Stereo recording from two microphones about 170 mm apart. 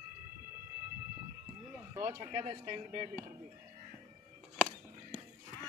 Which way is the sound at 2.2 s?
35° right (ahead or behind).